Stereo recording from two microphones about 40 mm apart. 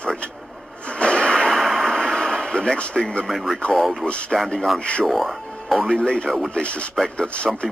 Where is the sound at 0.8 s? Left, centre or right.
Left.